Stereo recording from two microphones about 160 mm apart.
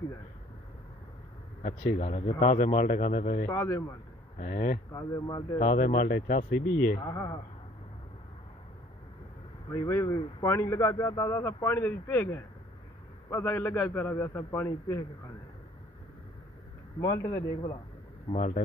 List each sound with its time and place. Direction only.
1.6 s speech: 40° left (ahead or behind)
3.4 s speech: 15° left (ahead or behind)
4.4 s speech: 55° left (ahead or behind)
4.9 s speech: 25° left (ahead or behind)
5.6 s speech: 50° left (ahead or behind)
7.1 s speech: 20° left (ahead or behind)
9.7 s speech: 15° left (ahead or behind)
17.0 s speech: 20° left (ahead or behind)
18.3 s speech: 45° left (ahead or behind)